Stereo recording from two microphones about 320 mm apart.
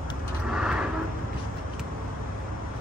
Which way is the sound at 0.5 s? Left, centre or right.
Centre.